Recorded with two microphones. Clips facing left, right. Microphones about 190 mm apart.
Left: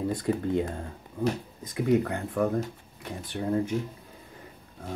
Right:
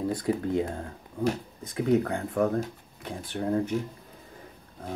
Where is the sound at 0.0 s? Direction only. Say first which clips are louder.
Even; 5° right (ahead or behind).